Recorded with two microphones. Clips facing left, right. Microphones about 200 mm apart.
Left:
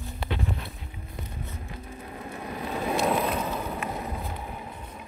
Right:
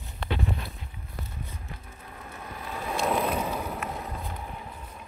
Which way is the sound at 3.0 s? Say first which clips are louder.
Right 1 dB; centre (ahead or behind).